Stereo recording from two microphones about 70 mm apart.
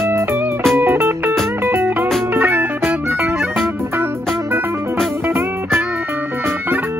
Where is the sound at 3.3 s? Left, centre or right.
Centre.